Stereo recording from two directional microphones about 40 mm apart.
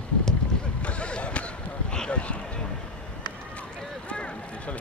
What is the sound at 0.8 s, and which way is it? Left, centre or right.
Basketball bounce, left.